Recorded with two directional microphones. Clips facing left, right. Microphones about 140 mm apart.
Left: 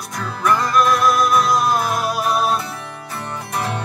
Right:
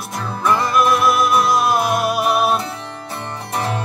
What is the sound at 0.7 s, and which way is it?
Music, 5° right (ahead or behind).